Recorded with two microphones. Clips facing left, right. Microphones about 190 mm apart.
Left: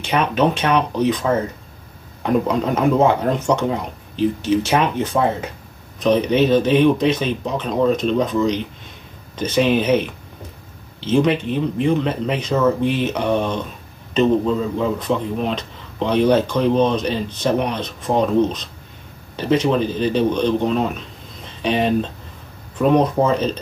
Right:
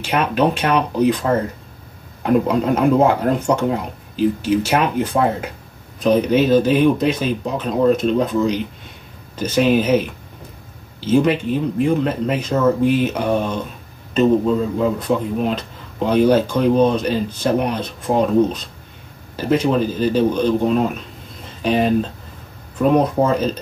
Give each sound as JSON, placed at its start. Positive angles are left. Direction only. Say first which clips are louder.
{"t": 0.0, "sound": "speech", "louder": "even", "side_deg": -5}
{"t": 2.2, "sound": "speech", "louder": "right 2 dB", "side_deg": -5}
{"t": 19.6, "sound": "speech", "louder": "right 1 dB", "side_deg": -5}